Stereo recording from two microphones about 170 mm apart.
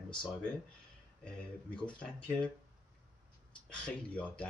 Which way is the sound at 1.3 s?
5° left (ahead or behind).